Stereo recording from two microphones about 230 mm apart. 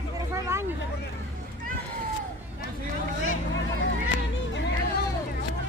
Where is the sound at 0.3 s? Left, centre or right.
Centre.